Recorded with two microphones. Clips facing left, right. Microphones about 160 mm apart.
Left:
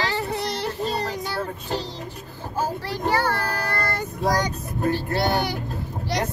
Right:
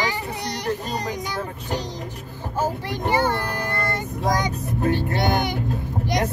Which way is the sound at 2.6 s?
20° right (ahead or behind).